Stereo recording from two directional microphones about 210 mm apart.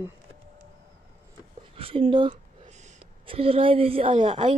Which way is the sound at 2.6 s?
35° right (ahead or behind).